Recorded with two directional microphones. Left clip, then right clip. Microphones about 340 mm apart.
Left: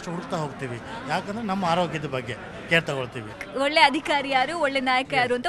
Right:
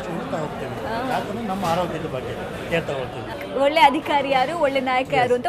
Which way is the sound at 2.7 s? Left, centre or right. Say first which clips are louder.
Left 2 dB; left.